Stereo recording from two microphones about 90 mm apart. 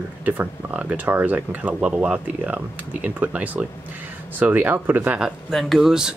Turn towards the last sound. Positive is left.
turn(degrees=-5)  # may be behind; listen again after turning